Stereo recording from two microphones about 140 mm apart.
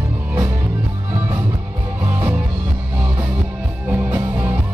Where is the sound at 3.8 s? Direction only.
10° right (ahead or behind).